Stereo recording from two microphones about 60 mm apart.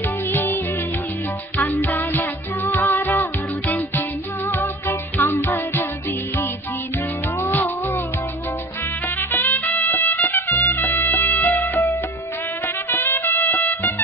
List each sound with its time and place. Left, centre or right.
0.3 s music: left
1.6 s music: left
7.4 s music: left
9.3 s music: left
12.9 s music: left